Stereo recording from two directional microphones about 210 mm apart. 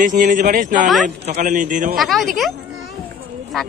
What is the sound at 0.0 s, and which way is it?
A man's voice, 40° right (ahead or behind).